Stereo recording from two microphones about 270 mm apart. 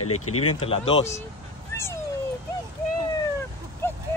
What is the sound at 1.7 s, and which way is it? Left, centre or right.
Cat, centre.